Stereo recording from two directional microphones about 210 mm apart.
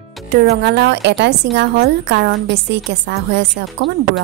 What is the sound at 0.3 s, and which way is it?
A woman's voice, 50° right (ahead or behind).